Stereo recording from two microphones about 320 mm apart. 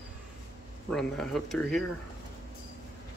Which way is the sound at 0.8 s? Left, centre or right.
Centre.